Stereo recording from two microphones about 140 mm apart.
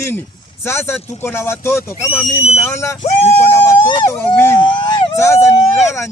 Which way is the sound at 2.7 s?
20° left (ahead or behind).